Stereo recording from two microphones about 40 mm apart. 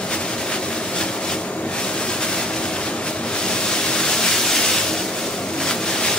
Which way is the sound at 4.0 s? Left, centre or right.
Centre.